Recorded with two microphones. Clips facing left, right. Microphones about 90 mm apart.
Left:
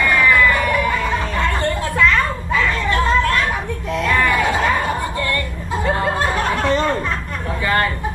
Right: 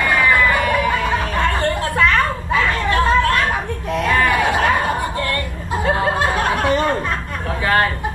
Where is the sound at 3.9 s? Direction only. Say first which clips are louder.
Right 1 dB; 15° right (ahead or behind).